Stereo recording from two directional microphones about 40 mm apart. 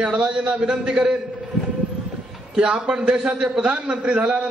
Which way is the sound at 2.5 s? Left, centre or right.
Right.